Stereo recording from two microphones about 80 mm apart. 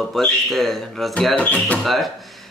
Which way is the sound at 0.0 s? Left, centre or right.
Centre.